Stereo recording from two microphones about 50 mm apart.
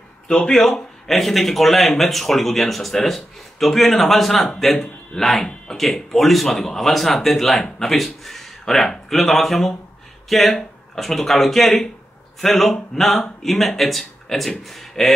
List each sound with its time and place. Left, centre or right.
0.3 s speech: centre
0.6 s speech: centre